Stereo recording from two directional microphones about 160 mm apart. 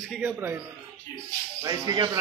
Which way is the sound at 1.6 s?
25° right (ahead or behind).